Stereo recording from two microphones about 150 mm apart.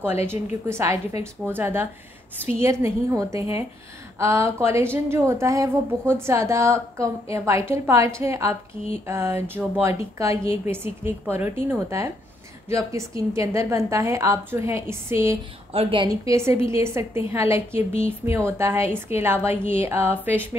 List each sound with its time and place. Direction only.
0.3 s a woman's voice: 15° right (ahead or behind)
15.7 s a woman's voice: 35° right (ahead or behind)
16.1 s a woman's voice: 20° right (ahead or behind)